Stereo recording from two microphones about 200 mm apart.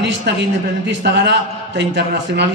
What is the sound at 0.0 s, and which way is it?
A man's voice, 60° right (ahead or behind).